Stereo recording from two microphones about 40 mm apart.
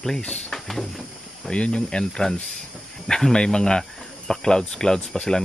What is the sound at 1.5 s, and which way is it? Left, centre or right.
Speech, left.